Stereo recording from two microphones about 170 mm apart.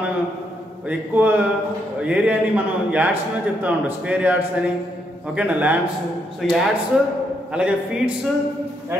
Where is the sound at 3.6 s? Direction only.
10° right (ahead or behind).